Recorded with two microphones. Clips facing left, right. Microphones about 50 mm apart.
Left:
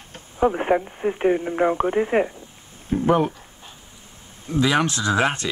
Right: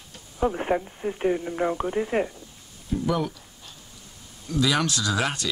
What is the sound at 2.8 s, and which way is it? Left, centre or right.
Speech, left.